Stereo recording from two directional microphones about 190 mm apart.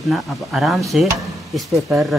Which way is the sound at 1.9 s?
Centre (ahead or behind).